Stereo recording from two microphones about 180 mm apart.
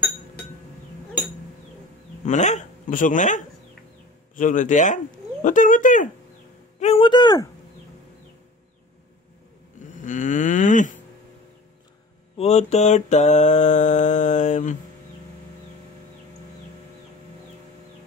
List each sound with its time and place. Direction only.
2.2 s speech: 40° left (ahead or behind)
6.8 s speech: 30° left (ahead or behind)
10.0 s speech: 45° left (ahead or behind)
12.4 s mantra: 35° left (ahead or behind)